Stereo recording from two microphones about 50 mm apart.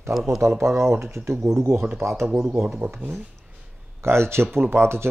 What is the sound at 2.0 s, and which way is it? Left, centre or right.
Speech, right.